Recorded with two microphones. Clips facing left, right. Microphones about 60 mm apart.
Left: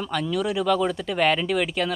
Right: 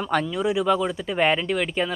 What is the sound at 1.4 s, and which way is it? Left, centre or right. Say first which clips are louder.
Speech: left 1 dB; centre.